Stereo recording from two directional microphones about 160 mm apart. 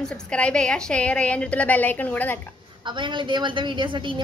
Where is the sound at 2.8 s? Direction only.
30° right (ahead or behind).